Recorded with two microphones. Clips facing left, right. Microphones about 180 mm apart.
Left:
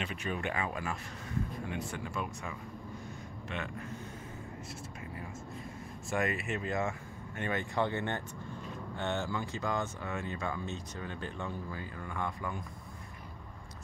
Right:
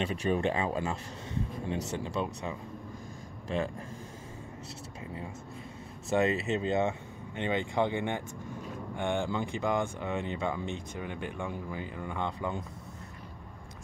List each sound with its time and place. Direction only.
0.0 s speech: 30° right (ahead or behind)
6.1 s speech: 25° right (ahead or behind)